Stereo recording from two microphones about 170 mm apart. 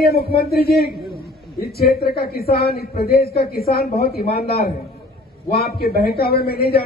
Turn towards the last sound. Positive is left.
turn(degrees=65)  # may be behind; listen again after turning